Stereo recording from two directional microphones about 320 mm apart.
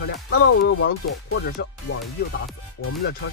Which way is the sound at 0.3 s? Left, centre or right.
Left.